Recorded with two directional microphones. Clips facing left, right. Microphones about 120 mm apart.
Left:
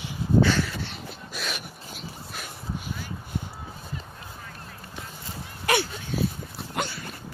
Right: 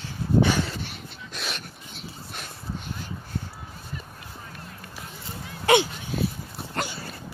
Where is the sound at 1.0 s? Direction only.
5° left (ahead or behind).